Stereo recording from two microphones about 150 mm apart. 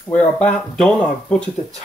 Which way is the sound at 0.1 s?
10° left (ahead or behind).